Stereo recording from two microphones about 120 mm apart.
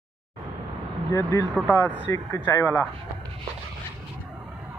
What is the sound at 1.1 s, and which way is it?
Speech, 25° left (ahead or behind).